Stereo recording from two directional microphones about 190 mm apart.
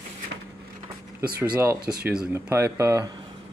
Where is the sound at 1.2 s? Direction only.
5° right (ahead or behind).